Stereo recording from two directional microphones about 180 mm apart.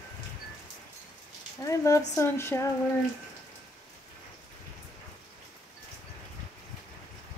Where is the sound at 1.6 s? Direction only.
15° left (ahead or behind).